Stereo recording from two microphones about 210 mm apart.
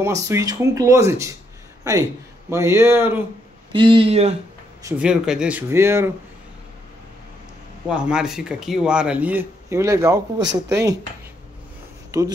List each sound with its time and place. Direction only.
0.0 s speech: 15° right (ahead or behind)
2.5 s speech: 15° right (ahead or behind)
3.7 s speech: 25° right (ahead or behind)
4.8 s speech: 5° right (ahead or behind)
7.9 s speech: 5° right (ahead or behind)
12.1 s speech: 15° right (ahead or behind)